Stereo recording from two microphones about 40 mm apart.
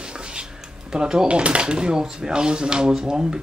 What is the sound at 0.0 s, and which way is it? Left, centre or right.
Speech, right.